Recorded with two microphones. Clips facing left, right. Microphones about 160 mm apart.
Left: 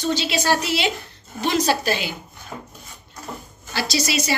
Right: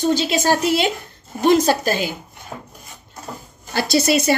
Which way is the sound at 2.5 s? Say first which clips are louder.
Right 1 dB; 15° right (ahead or behind).